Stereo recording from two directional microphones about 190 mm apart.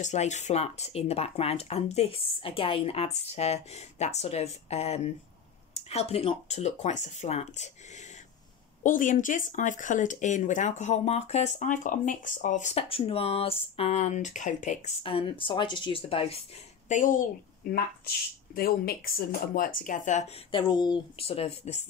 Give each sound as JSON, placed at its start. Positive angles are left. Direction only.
{"t": 0.0, "sound": "speech", "side_deg": 40}
{"t": 16.9, "sound": "speech", "side_deg": 45}
{"t": 20.5, "sound": "speech", "side_deg": 25}